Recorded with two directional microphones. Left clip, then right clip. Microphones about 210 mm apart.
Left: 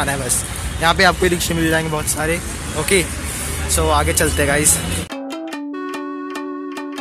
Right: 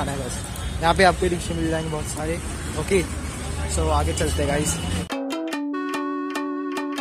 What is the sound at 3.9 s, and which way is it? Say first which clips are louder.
Speech: left 7 dB; centre (ahead or behind).